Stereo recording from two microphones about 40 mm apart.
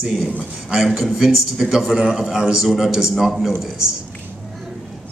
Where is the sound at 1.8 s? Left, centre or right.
Right.